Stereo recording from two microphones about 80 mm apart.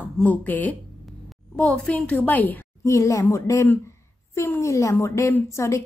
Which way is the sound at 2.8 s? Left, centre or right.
Left.